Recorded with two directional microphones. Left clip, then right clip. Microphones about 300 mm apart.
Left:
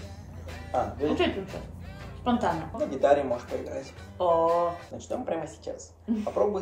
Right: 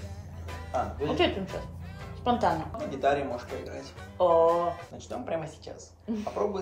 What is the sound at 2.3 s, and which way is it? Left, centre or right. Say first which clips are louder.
Speech: right 1 dB; centre.